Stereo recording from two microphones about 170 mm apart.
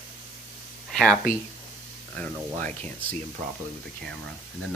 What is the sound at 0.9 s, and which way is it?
Speech, centre (ahead or behind).